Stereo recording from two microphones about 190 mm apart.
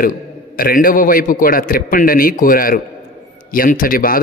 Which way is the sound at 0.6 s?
50° left (ahead or behind).